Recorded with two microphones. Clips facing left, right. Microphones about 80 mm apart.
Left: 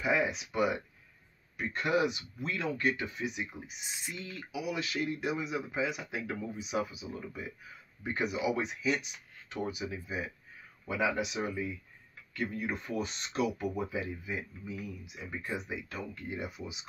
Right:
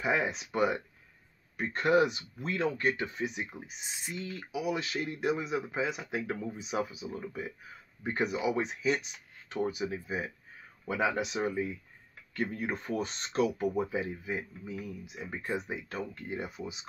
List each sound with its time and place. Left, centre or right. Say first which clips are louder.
0.0 s speech: even; right